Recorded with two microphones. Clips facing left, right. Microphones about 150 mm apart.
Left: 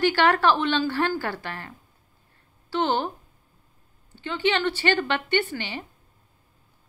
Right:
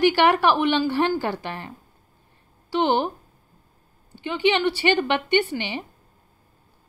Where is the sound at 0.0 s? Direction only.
15° right (ahead or behind).